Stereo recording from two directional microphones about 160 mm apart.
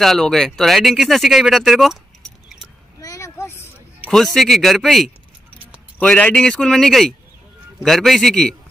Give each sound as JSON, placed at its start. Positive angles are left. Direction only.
{"t": 0.0, "sound": "speech", "side_deg": 0}
{"t": 3.0, "sound": "a sound", "side_deg": 20}
{"t": 4.1, "sound": "speech", "side_deg": 0}